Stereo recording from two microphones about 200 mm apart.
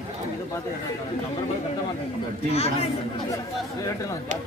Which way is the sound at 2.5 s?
30° left (ahead or behind).